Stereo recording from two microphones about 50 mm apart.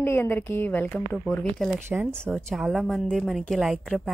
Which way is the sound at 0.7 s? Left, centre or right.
Left.